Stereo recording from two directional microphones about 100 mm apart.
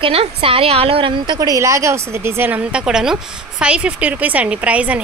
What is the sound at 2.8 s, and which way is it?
Speech, 5° right (ahead or behind).